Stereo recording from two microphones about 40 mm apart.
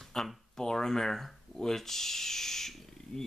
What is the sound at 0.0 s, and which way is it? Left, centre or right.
Speech, centre.